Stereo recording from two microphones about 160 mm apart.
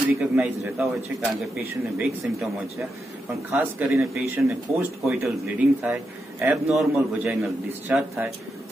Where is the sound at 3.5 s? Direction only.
15° right (ahead or behind).